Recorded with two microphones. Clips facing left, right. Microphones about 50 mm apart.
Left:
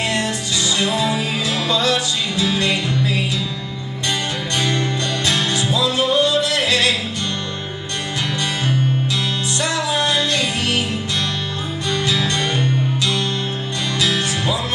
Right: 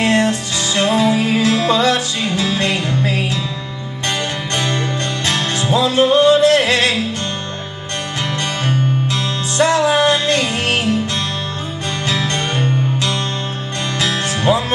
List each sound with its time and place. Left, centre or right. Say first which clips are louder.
0.0 s music: right 6 dB; right
4.6 s music: right 1 dB; right
8.6 s music: right 3 dB; right
12.1 s music: right 3 dB; right